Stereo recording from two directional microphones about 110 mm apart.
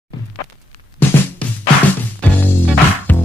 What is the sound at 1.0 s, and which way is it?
Music, 15° left (ahead or behind).